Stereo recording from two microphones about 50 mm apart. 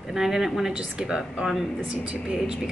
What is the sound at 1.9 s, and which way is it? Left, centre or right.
Speech, right.